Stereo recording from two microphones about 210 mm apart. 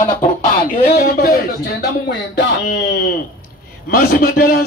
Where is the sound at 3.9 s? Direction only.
45° left (ahead or behind).